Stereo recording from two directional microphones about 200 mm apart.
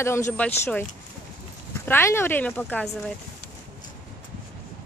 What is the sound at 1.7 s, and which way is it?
Speech, 10° left (ahead or behind).